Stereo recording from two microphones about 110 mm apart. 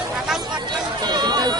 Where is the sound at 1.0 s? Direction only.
40° right (ahead or behind).